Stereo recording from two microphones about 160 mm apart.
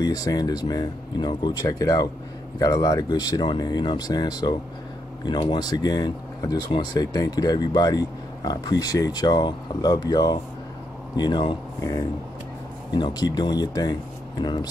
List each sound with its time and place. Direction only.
0.0 s speech: 25° left (ahead or behind)